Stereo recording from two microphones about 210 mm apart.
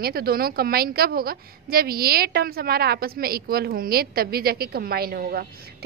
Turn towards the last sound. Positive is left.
turn(degrees=-45)  # may be behind; listen again after turning